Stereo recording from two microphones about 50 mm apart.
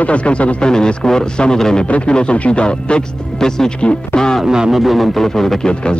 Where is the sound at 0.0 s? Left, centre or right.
Left.